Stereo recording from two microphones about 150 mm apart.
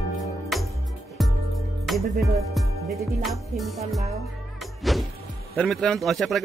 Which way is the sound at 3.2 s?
Centre (ahead or behind).